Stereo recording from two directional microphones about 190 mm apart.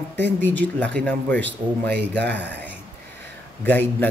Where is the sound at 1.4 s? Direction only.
65° right (ahead or behind).